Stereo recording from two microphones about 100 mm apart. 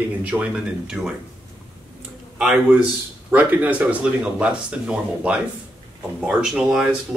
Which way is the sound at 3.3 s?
15° right (ahead or behind).